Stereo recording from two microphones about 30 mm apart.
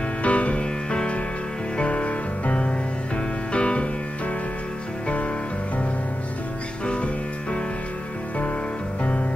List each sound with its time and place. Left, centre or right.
0.2 s music: left
0.8 s music: left
1.8 s music: left
5.0 s music: left